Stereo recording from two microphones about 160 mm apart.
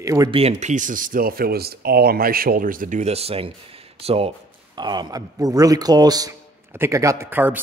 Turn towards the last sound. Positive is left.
turn(degrees=-10)  # may be behind; listen again after turning